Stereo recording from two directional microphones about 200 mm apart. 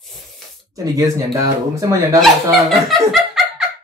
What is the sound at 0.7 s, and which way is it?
Speech, 15° right (ahead or behind).